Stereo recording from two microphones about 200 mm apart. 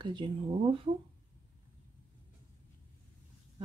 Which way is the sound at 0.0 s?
25° right (ahead or behind).